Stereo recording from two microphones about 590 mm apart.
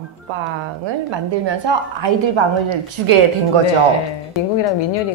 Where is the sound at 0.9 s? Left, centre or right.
Right.